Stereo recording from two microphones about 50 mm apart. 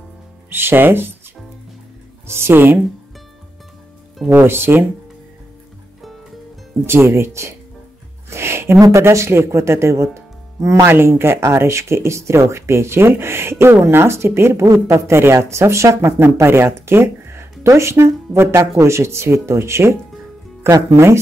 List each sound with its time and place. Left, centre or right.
0.5 s speech: right
2.2 s speech: right
4.3 s speech: right
6.9 s speech: right
10.9 s speech: right